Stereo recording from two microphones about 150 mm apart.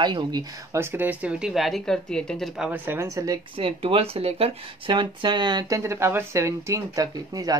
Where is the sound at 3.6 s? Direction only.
40° right (ahead or behind).